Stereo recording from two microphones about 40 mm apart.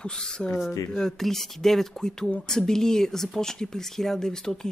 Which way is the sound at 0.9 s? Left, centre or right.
Centre.